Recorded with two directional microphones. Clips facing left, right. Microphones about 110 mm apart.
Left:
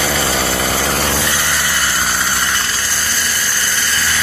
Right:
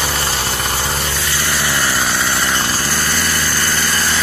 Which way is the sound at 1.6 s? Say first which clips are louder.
Right 1 dB; 20° right (ahead or behind).